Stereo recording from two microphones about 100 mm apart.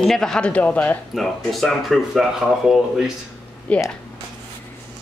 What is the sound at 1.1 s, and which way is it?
Speech, centre (ahead or behind).